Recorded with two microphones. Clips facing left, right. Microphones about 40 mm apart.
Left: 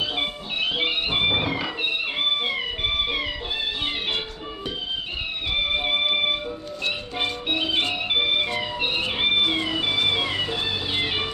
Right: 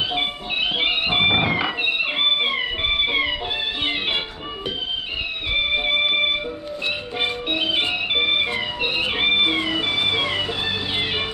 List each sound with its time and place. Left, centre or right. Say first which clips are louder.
0.0 s music: right 3 dB; right
5.5 s music: right 3 dB; centre
7.2 s music: right 2 dB; centre
8.8 s cat: right 3 dB; centre